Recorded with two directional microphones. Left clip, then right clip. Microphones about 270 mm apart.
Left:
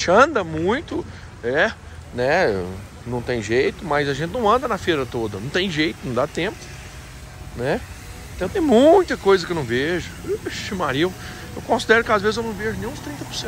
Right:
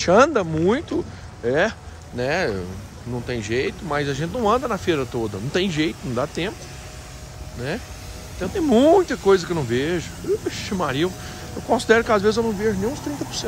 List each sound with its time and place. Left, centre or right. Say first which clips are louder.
0.0 s speech: even; centre
7.6 s speech: left 6 dB; centre; by 13.5 s right